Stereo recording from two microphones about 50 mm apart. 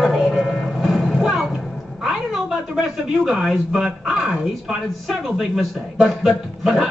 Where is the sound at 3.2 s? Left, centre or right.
Centre.